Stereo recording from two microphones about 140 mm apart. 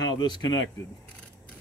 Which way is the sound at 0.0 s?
30° left (ahead or behind).